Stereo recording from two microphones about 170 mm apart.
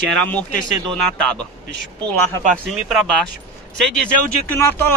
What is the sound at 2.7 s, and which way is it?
Speech, 5° right (ahead or behind).